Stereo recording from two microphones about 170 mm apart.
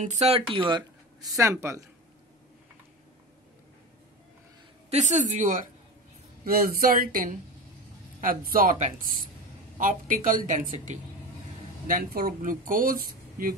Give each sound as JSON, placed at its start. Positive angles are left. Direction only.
{"t": 0.0, "sound": "speech", "side_deg": -40}
{"t": 0.5, "sound": "speech", "side_deg": -30}
{"t": 1.6, "sound": "speech", "side_deg": -15}
{"t": 4.8, "sound": "a woman's voice", "side_deg": -40}